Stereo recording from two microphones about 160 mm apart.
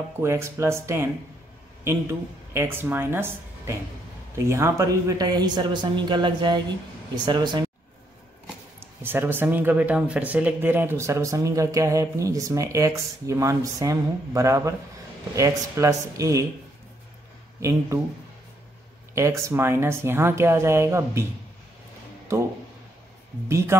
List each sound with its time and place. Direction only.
0.2 s speech: 15° right (ahead or behind)
2.5 s speech: 15° right (ahead or behind)
9.0 s speech: 15° right (ahead or behind)
17.6 s speech: 20° right (ahead or behind)
19.1 s speech: 20° right (ahead or behind)
23.7 s speech: 15° right (ahead or behind)